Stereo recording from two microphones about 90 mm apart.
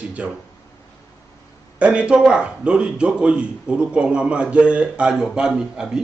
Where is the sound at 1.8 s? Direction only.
15° right (ahead or behind).